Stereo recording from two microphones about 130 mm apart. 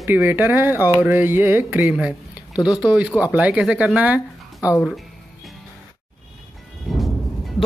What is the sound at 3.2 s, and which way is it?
Speech, 10° right (ahead or behind).